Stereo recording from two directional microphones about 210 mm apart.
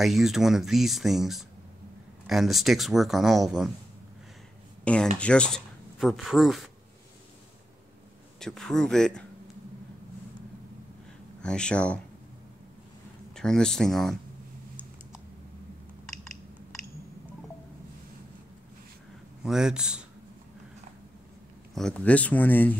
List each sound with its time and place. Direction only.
0.0 s speech: centre (ahead or behind)
4.9 s speech: 5° left (ahead or behind)
8.4 s speech: centre (ahead or behind)
11.4 s speech: 5° left (ahead or behind)
13.3 s speech: 5° left (ahead or behind)
19.4 s speech: 5° right (ahead or behind)
21.7 s speech: 5° left (ahead or behind)